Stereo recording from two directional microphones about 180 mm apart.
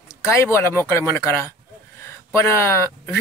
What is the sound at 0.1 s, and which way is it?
Speech, 15° left (ahead or behind).